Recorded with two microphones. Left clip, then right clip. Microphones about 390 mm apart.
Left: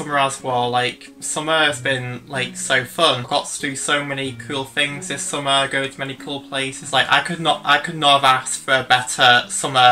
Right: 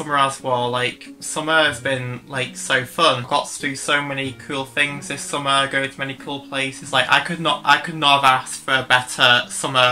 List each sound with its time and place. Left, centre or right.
0.1 s speech: centre